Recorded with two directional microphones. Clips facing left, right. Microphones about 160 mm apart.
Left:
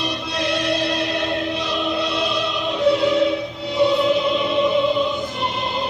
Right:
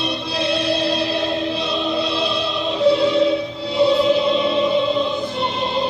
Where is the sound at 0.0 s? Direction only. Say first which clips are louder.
Right 2 dB; 30° right (ahead or behind).